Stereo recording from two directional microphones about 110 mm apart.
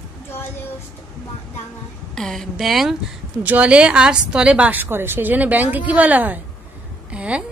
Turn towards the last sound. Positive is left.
turn(degrees=-10)  # may be behind; listen again after turning